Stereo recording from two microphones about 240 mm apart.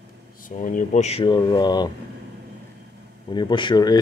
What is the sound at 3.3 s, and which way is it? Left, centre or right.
Speech, centre.